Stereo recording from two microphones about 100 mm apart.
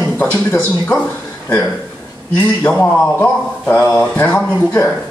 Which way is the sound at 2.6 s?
15° left (ahead or behind).